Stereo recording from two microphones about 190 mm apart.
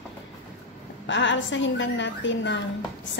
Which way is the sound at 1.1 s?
75° left (ahead or behind).